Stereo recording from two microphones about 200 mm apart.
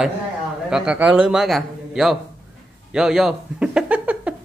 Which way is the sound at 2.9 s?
Centre (ahead or behind).